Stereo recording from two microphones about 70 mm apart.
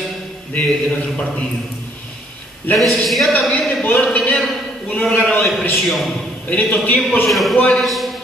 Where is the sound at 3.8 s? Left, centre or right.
Centre.